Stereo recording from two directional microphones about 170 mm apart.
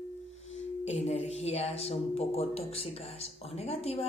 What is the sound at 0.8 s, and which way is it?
Speech, 40° left (ahead or behind).